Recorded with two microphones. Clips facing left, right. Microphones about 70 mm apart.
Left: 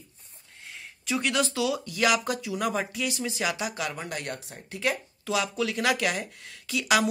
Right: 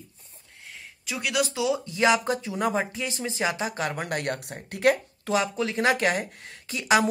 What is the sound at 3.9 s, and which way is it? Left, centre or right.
Speech, right.